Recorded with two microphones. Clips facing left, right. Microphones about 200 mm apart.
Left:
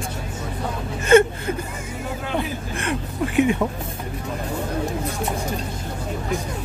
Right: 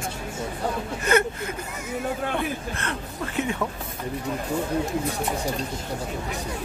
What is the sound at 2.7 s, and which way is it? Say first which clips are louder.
Speech: left 6 dB; 15° left (ahead or behind).